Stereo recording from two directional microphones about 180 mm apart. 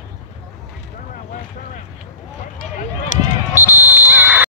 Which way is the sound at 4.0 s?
10° right (ahead or behind).